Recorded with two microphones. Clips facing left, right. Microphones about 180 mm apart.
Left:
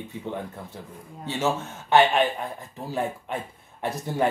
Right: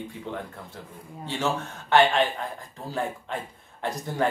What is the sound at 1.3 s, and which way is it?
A man's voice, 20° left (ahead or behind).